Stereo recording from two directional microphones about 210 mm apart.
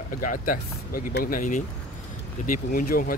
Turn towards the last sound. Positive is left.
turn(degrees=45)  # may be behind; listen again after turning